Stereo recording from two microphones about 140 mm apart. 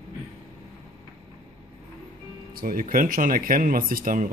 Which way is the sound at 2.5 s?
90° right.